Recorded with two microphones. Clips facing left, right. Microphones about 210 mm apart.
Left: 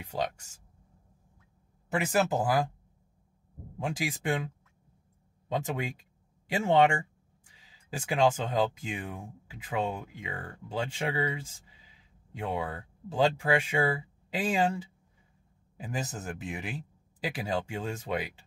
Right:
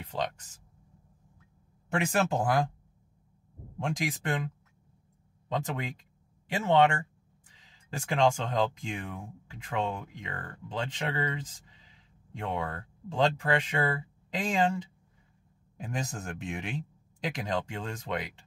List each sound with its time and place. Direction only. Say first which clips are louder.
0.0 s speech: left 1 dB; 10° left (ahead or behind)
1.9 s speech: left 1 dB; 5° left (ahead or behind)
3.7 s speech: right 1 dB; 5° left (ahead or behind)
5.5 s speech: left 1 dB; 10° left (ahead or behind)